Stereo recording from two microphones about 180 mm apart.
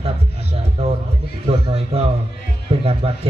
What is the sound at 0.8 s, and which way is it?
Music, 35° right (ahead or behind).